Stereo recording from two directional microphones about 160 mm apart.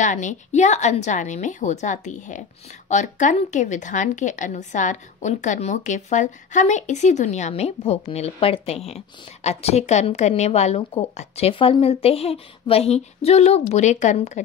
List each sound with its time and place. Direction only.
0.0 s a woman's voice: 50° left (ahead or behind)